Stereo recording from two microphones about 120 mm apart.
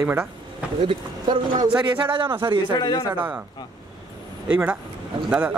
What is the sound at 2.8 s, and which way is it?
Speech, 40° left (ahead or behind).